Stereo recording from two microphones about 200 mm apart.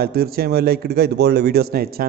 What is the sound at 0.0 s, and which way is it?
A man's voice, 50° right (ahead or behind).